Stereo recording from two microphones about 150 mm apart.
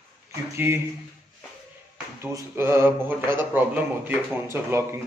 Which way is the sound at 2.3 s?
20° right (ahead or behind).